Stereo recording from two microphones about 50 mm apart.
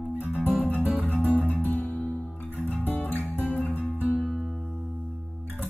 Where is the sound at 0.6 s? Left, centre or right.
Left.